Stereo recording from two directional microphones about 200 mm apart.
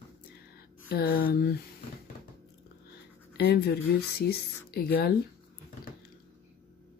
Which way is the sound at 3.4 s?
50° left (ahead or behind).